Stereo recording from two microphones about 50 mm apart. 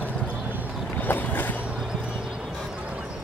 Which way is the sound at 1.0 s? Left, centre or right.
Left.